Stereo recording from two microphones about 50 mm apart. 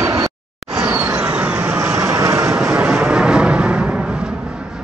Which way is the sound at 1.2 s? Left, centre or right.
Right.